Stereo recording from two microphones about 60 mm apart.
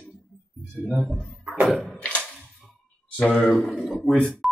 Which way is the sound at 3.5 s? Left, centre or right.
Centre.